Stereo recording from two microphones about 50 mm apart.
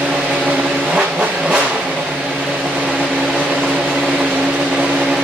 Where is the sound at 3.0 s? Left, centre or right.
Centre.